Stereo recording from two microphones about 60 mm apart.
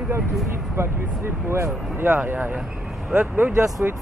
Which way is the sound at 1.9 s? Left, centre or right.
Right.